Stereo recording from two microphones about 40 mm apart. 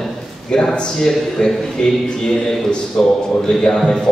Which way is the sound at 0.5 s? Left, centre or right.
Left.